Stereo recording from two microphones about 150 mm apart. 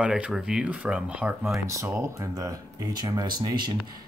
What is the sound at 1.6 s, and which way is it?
Speech, 20° right (ahead or behind).